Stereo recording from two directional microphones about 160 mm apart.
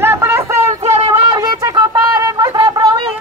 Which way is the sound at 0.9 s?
35° right (ahead or behind).